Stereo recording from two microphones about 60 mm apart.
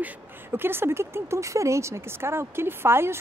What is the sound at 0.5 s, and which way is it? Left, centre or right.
Speech, right.